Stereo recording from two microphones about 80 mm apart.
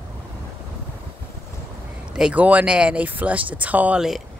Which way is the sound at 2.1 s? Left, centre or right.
Centre.